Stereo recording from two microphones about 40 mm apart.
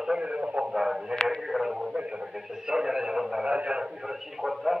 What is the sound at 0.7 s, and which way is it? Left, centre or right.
Radio, centre.